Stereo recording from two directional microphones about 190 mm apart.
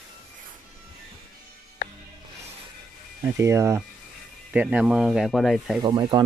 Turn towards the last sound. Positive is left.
turn(degrees=-25)  # may be behind; listen again after turning